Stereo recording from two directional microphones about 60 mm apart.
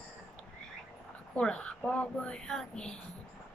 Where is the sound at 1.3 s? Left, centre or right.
Centre.